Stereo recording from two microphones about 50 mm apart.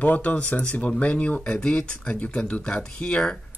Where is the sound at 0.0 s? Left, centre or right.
Left.